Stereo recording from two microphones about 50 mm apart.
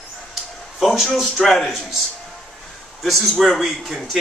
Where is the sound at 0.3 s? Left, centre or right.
Centre.